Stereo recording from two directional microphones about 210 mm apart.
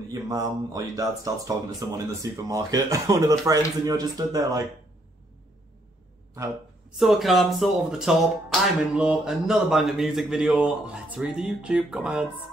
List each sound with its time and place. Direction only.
0.1 s speech: 15° right (ahead or behind)
7.0 s speech: centre (ahead or behind)